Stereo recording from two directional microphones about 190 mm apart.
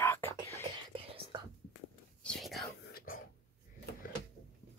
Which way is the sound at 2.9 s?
50° left (ahead or behind).